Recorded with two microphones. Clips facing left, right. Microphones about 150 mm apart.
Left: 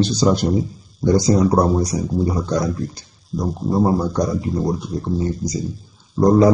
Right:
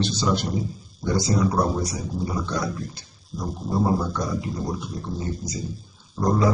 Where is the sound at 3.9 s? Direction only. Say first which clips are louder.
Left 6 dB; 35° left (ahead or behind).